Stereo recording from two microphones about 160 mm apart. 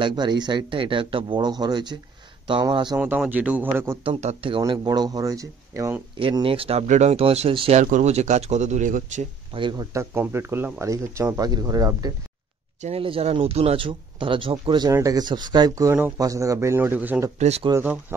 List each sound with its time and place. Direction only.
0.0 s speech: 30° right (ahead or behind)
3.0 s speech: 10° right (ahead or behind)
4.0 s speech: 40° right (ahead or behind); by 6.0 s 15° right (ahead or behind)
6.1 s speech: 35° right (ahead or behind)
7.8 s speech: 50° right (ahead or behind)
9.5 s speech: 30° right (ahead or behind)
12.8 s speech: 35° right (ahead or behind)
14.9 s speech: 20° right (ahead or behind)
17.4 s speech: 40° right (ahead or behind)
17.6 s speech: 15° right (ahead or behind)